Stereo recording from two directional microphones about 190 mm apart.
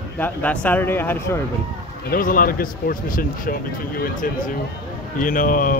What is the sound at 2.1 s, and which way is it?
Speech, 45° left (ahead or behind).